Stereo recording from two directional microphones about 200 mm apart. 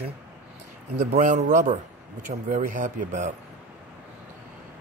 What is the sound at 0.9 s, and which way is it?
A man's voice, 35° right (ahead or behind).